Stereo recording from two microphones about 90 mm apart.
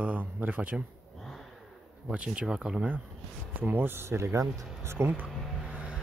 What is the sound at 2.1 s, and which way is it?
Speech, 15° right (ahead or behind).